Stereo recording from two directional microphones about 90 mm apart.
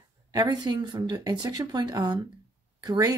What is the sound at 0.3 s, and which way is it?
Speech, 50° right (ahead or behind).